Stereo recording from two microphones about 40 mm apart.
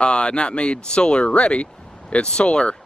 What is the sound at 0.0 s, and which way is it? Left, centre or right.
Speech, left.